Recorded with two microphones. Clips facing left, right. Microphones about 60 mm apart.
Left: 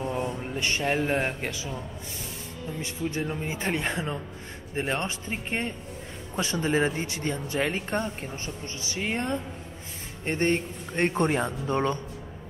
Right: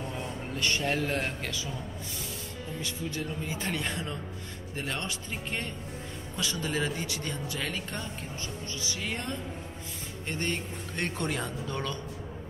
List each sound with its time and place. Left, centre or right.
0.0 s speech: left
2.8 s speech: left